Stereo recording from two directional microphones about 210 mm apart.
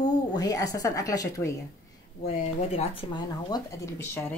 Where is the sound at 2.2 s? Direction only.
30° left (ahead or behind).